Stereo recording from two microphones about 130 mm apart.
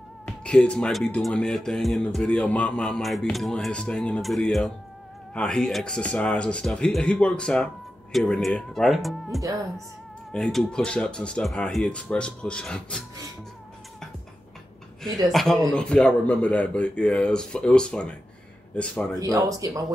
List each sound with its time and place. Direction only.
0.4 s speech: 10° left (ahead or behind)
9.4 s speech: 25° right (ahead or behind)
10.3 s speech: centre (ahead or behind)
15.3 s speech: 5° left (ahead or behind)
19.1 s speech: 25° right (ahead or behind)